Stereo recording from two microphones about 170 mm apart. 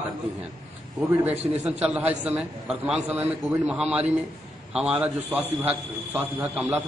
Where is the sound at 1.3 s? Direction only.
40° right (ahead or behind).